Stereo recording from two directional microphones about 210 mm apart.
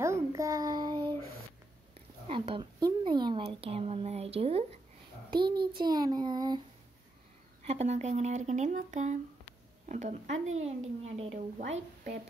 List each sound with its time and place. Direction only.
0.0 s child singing: 15° right (ahead or behind)
2.2 s a sound: 25° right (ahead or behind)
5.3 s a child's voice: 20° right (ahead or behind)
7.6 s speech: 30° right (ahead or behind)